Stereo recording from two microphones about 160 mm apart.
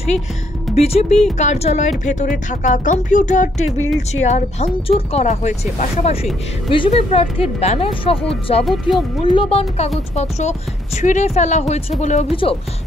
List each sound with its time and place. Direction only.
0.7 s speech: 40° left (ahead or behind)
6.7 s speech: 35° left (ahead or behind)